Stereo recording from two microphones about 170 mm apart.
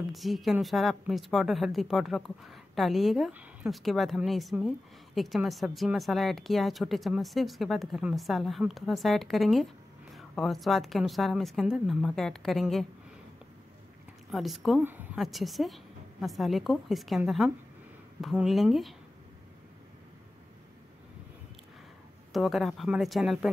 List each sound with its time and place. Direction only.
0.1 s a woman's voice: centre (ahead or behind)
14.3 s a woman's voice: centre (ahead or behind)
14.8 s speech: 10° right (ahead or behind)
15.1 s a woman's voice: centre (ahead or behind)
18.2 s a woman's voice: centre (ahead or behind)
22.3 s a woman's voice: centre (ahead or behind)